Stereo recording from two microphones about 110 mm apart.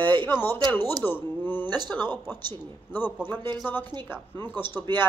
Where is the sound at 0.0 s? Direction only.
45° right (ahead or behind).